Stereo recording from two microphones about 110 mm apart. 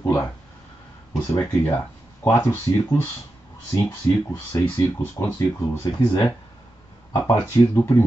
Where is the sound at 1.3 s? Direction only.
25° left (ahead or behind).